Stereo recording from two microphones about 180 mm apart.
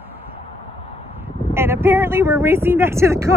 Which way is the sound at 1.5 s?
15° right (ahead or behind).